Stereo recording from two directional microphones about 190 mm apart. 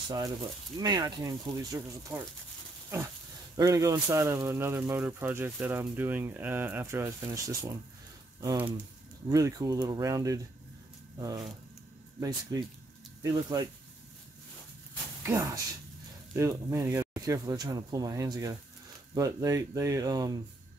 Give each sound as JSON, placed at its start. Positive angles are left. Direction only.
{"t": 0.1, "sound": "speech", "side_deg": -20}
{"t": 15.2, "sound": "speech", "side_deg": -15}